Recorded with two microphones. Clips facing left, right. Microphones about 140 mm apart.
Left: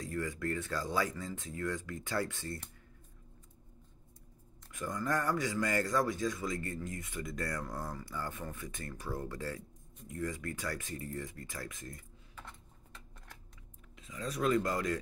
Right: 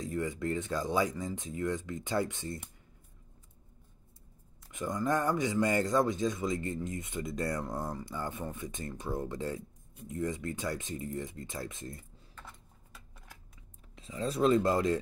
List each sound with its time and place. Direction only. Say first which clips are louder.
0.0 s speech: right 3 dB; 20° right (ahead or behind)
4.6 s speech: right 4 dB; 20° right (ahead or behind)
12.4 s a sound: even; 5° right (ahead or behind)
13.9 s speech: right 6 dB; 30° right (ahead or behind)